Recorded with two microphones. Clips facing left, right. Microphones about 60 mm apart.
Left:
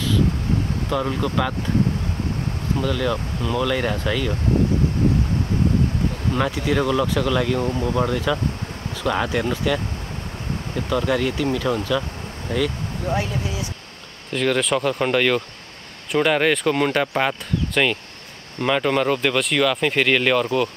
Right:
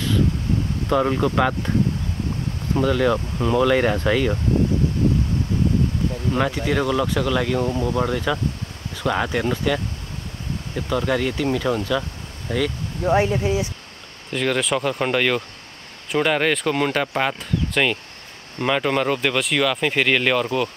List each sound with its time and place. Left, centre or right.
0.8 s speech: centre
2.7 s speech: centre
6.3 s speech: centre
10.9 s speech: centre
13.0 s speech: right
14.3 s speech: centre